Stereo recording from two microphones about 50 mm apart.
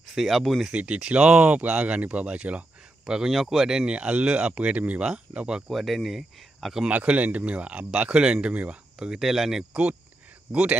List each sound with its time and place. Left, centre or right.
0.0 s speech: centre
0.7 s speech: right
3.3 s speech: centre
3.9 s speech: right
5.7 s speech: centre
6.9 s speech: right
9.2 s speech: centre
10.5 s speech: right